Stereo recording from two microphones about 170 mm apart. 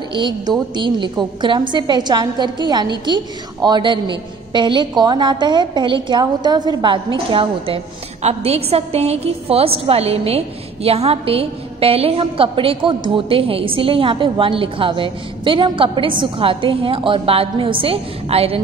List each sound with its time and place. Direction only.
0.1 s a woman's voice: 25° right (ahead or behind)